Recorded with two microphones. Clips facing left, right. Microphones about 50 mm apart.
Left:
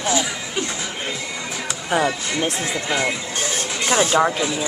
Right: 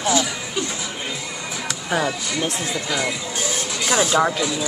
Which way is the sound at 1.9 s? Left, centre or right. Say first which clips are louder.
Left 2 dB; left.